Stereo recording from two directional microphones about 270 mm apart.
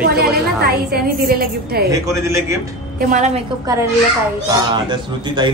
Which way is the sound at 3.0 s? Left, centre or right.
Right.